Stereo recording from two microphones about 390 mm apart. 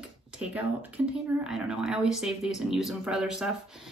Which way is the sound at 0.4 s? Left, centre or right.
Centre.